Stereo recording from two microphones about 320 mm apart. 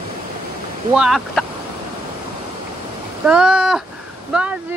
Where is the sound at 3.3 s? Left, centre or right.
Centre.